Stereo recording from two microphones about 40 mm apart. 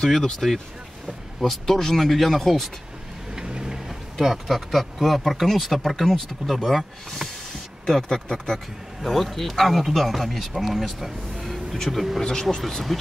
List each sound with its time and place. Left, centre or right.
0.0 s speech: centre
3.3 s vehicle: centre
3.7 s speech: centre
7.8 s speech: centre
9.0 s speech: centre
12.2 s speech: centre
12.6 s speech: centre